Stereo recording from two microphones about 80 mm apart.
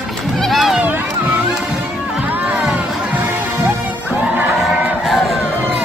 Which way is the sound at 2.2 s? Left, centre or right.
Right.